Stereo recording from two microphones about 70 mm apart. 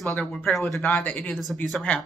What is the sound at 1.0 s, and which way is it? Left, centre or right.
Speech, left.